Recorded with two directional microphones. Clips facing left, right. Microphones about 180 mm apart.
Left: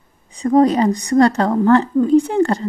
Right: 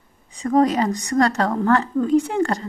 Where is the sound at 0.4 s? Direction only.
30° left (ahead or behind).